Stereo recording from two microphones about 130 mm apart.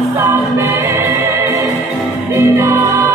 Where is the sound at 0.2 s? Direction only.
20° right (ahead or behind).